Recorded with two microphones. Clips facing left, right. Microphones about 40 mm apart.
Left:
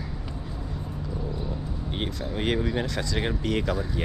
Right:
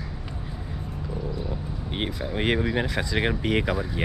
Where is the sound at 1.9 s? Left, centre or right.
Right.